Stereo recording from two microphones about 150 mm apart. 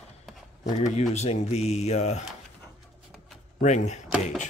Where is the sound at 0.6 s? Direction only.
45° left (ahead or behind).